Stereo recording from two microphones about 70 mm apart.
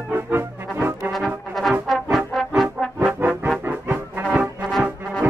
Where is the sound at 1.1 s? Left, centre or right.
Centre.